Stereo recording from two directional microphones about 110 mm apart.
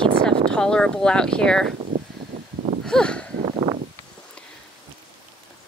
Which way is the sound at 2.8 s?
5° left (ahead or behind).